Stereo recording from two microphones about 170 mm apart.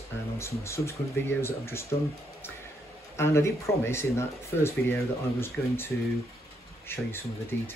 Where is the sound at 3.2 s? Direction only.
15° left (ahead or behind).